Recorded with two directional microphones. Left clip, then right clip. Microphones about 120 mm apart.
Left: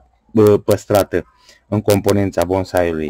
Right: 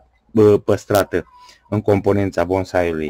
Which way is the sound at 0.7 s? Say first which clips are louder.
Left 2 dB; 20° left (ahead or behind).